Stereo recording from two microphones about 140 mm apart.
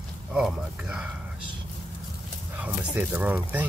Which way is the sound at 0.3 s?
5° right (ahead or behind).